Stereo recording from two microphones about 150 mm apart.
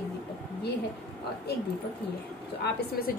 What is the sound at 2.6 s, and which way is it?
Speech, 90° left.